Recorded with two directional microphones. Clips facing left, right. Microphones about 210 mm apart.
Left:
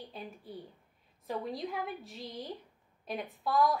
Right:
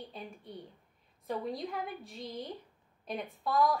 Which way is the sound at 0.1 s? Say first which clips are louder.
Left 1 dB; 5° left (ahead or behind).